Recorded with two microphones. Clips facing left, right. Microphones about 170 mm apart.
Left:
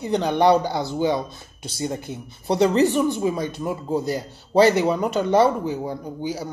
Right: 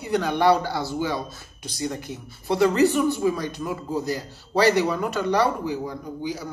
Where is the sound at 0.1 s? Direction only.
20° left (ahead or behind).